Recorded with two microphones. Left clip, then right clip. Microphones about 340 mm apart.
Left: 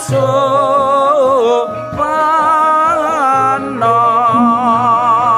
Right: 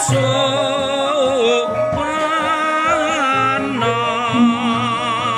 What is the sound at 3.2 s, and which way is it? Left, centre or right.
Music, centre.